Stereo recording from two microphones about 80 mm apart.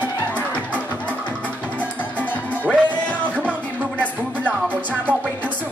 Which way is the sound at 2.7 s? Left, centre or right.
Centre.